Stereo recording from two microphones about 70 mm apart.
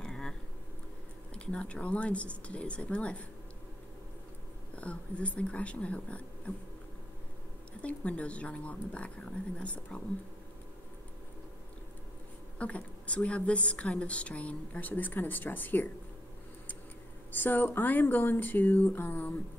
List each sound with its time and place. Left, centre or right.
0.0 s a sound: centre
1.3 s a woman's voice: centre
4.7 s a woman's voice: centre
7.8 s a woman's voice: centre
12.5 s speech: centre
17.3 s speech: left